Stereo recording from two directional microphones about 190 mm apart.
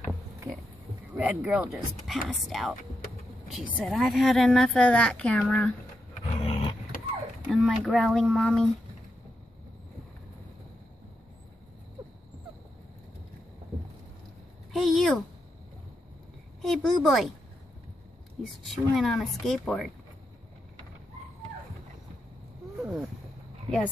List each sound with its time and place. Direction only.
1.1 s speech: 5° right (ahead or behind)
6.2 s roar: 30° left (ahead or behind)
7.4 s speech: centre (ahead or behind)
14.7 s a sound: centre (ahead or behind)
16.6 s a woman's voice: centre (ahead or behind)
18.7 s speech: centre (ahead or behind)
22.8 s a sound: 5° right (ahead or behind)